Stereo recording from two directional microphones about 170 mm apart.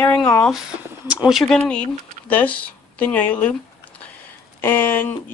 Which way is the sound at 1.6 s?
10° left (ahead or behind).